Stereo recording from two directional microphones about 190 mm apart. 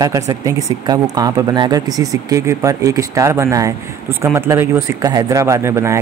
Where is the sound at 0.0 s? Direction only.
20° right (ahead or behind).